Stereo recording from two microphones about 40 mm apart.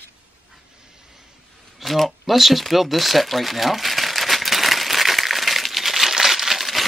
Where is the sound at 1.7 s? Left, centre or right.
Centre.